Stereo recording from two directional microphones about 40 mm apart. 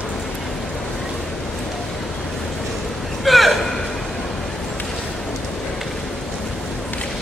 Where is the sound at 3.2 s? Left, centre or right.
Centre.